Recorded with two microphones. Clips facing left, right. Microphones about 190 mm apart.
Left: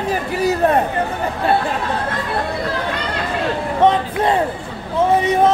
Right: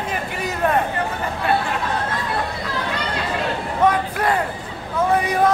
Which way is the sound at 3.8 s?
25° left (ahead or behind).